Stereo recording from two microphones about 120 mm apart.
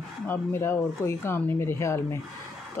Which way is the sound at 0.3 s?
20° left (ahead or behind).